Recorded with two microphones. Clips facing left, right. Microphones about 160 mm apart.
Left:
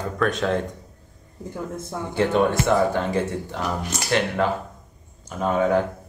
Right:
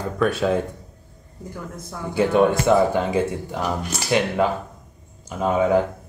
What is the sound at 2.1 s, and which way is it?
Speech, 15° right (ahead or behind).